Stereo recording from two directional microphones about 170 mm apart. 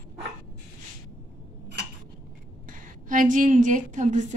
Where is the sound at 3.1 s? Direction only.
50° right (ahead or behind).